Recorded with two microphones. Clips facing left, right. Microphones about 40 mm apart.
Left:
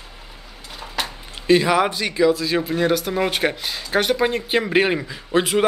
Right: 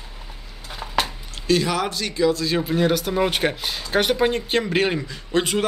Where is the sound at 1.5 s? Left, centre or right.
Left.